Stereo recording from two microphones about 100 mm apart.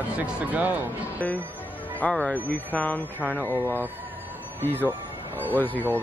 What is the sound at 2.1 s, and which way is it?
Speech, 15° left (ahead or behind).